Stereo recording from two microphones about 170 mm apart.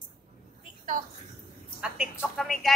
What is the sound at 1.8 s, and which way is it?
Speech, 5° right (ahead or behind).